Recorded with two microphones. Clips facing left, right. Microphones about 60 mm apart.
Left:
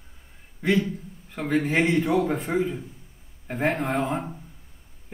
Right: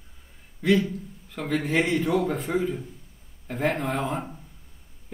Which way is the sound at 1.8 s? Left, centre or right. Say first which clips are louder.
Left 2 dB; centre.